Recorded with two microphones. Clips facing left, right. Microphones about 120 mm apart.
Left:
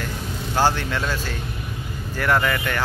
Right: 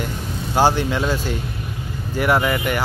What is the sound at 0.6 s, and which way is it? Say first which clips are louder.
Speech: right 4 dB; 15° right (ahead or behind).